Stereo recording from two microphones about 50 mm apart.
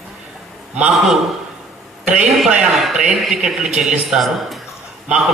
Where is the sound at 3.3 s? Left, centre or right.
Centre.